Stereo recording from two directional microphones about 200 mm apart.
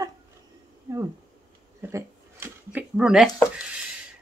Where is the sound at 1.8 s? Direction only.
10° right (ahead or behind).